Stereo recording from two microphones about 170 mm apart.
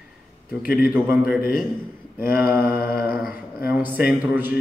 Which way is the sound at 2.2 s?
60° left (ahead or behind).